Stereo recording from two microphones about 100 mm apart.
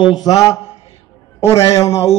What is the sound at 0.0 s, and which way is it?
Speech, 40° left (ahead or behind).